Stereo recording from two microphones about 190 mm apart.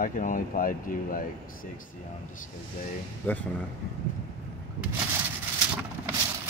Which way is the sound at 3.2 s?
10° left (ahead or behind).